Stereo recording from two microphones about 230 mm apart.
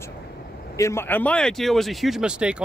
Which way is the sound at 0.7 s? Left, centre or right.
Centre.